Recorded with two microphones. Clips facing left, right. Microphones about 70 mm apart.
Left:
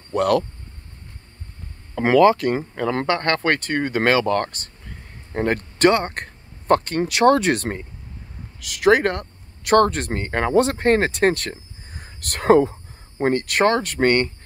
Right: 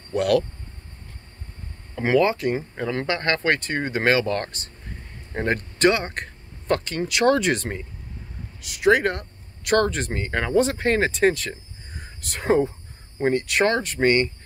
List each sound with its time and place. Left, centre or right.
0.1 s speech: left
2.0 s speech: left
8.5 s speech: left